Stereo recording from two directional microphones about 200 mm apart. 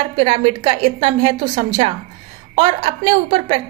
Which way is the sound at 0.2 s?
30° right (ahead or behind).